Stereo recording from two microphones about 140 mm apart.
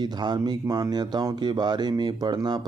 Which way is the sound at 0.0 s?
30° right (ahead or behind).